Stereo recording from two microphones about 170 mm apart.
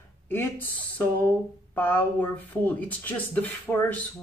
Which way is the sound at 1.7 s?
10° left (ahead or behind).